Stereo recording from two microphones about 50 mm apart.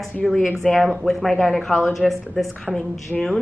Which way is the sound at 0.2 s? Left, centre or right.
Centre.